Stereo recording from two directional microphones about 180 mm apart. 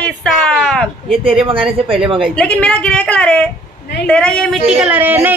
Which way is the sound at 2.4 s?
5° left (ahead or behind).